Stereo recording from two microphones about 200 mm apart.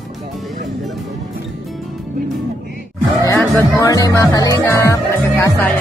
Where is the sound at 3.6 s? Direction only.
15° left (ahead or behind).